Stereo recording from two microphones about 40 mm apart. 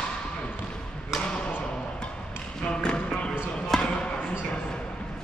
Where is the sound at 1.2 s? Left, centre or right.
Left.